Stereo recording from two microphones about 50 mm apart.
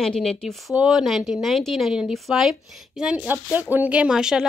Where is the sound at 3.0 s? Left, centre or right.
Right.